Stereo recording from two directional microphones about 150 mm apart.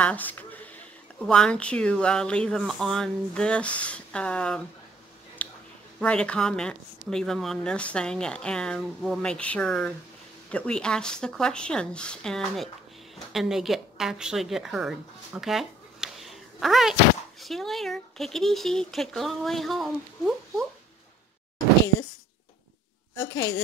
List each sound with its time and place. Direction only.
0.0 s speech: 10° left (ahead or behind)
5.4 s a sound: 10° left (ahead or behind)
5.9 s a woman's voice: 10° left (ahead or behind)
23.2 s a woman's voice: 20° left (ahead or behind)